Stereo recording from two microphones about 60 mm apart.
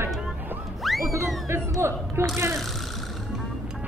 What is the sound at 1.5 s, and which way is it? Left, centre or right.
Speech, right.